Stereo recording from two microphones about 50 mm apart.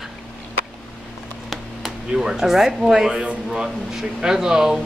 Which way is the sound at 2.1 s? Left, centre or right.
Centre.